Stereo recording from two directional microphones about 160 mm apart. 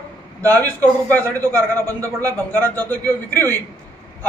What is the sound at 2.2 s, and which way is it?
A man's voice, 10° left (ahead or behind).